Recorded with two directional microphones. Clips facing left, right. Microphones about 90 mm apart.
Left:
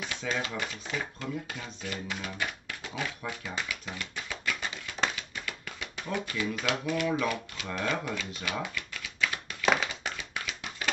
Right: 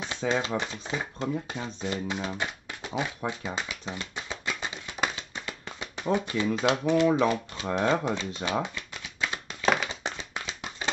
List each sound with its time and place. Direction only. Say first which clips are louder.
0.0 s speech: right 5 dB; 30° right (ahead or behind)
5.1 s typewriter: right 1 dB; 25° right (ahead or behind)
9.8 s tap: right 2 dB; 30° right (ahead or behind)